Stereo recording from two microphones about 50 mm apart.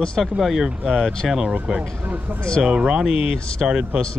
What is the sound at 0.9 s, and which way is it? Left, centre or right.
Speech, centre.